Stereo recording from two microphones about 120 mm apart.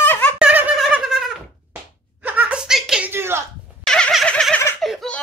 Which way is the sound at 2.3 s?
10° right (ahead or behind).